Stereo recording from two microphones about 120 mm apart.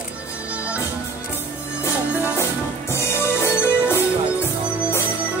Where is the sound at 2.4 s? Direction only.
20° left (ahead or behind).